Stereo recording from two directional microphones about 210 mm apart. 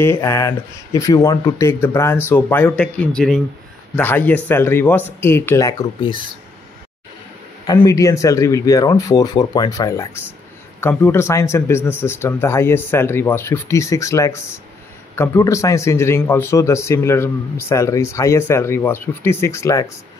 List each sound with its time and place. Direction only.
0.0 s speech: 15° left (ahead or behind)
7.6 s speech: 15° left (ahead or behind)